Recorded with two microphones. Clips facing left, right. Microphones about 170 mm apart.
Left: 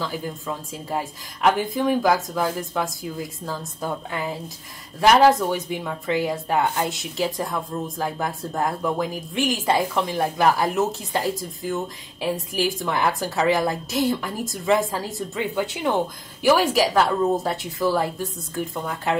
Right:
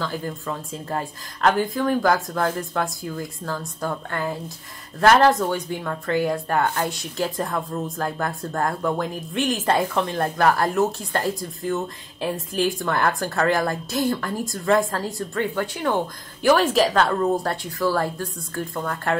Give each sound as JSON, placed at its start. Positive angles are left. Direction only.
{"t": 0.0, "sound": "speech", "side_deg": 10}
{"t": 15.6, "sound": "speech", "side_deg": 25}
{"t": 16.4, "sound": "speech", "side_deg": 5}
{"t": 17.8, "sound": "speech", "side_deg": 15}